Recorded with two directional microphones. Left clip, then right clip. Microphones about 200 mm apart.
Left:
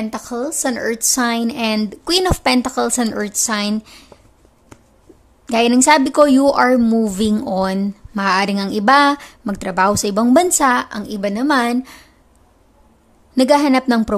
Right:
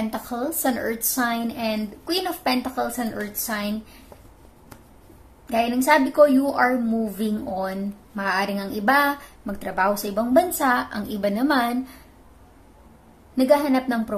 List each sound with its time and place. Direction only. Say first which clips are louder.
0.1 s a woman's voice: left 4 dB; 30° left (ahead or behind); by 3.7 s 45° left (ahead or behind)
5.5 s a woman's voice: left 6 dB; 45° left (ahead or behind)
13.4 s a woman's voice: left 6 dB; 45° left (ahead or behind)